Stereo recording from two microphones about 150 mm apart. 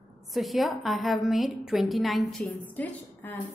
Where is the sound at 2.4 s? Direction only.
10° left (ahead or behind).